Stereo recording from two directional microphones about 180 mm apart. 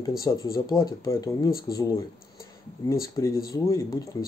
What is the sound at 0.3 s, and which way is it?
Speech, 20° left (ahead or behind).